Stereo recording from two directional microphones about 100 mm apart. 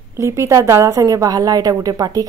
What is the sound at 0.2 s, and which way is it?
A woman's voice, 30° right (ahead or behind).